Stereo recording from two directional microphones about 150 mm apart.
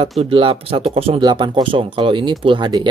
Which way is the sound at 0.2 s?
40° right (ahead or behind).